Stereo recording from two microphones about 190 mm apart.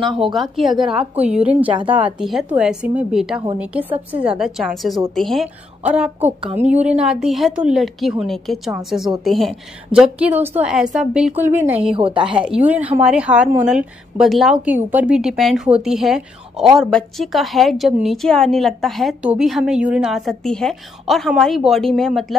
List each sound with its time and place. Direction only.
0.0 s a woman's voice: centre (ahead or behind)
1.7 s a woman's voice: 25° right (ahead or behind)
2.0 s a woman's voice: centre (ahead or behind)
11.9 s a woman's voice: 25° right (ahead or behind)
12.3 s a woman's voice: 5° right (ahead or behind)